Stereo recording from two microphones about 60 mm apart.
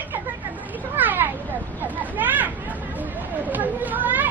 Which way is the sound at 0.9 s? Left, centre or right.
Right.